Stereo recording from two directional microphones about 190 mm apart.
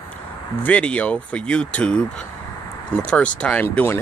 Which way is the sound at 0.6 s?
5° left (ahead or behind).